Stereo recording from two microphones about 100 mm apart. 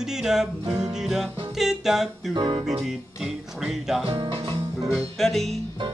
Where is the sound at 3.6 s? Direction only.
5° right (ahead or behind).